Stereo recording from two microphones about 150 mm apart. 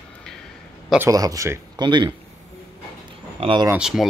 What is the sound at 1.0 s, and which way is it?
Speech, 25° right (ahead or behind).